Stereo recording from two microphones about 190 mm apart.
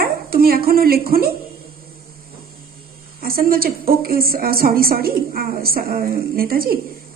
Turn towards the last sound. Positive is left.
turn(degrees=-50)  # may be behind; listen again after turning